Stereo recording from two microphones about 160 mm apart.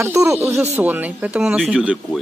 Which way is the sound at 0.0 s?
15° right (ahead or behind).